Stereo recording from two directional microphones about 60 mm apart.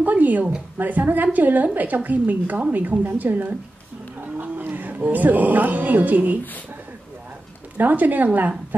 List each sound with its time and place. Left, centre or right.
0.0 s a woman's voice: right
7.7 s a woman's voice: right